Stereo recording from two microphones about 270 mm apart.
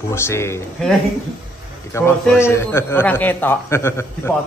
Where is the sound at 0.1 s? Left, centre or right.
Centre.